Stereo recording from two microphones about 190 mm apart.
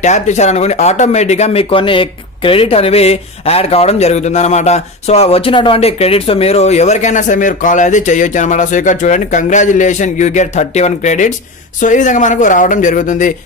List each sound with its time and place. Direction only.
0.0 s speech: 35° left (ahead or behind)